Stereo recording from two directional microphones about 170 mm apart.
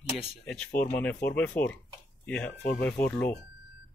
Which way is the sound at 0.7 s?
55° left (ahead or behind).